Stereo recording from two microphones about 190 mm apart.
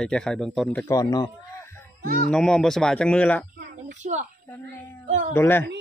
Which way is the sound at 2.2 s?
5° left (ahead or behind).